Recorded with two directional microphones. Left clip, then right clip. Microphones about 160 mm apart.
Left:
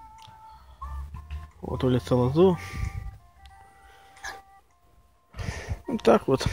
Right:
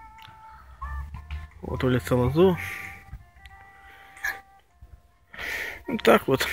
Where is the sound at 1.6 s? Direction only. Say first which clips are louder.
Even; 20° left (ahead or behind).